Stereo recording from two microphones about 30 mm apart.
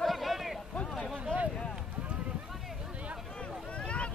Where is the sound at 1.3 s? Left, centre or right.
Left.